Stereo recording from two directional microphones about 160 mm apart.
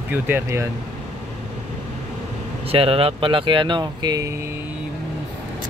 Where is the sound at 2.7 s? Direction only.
35° right (ahead or behind); by 4.4 s 20° right (ahead or behind).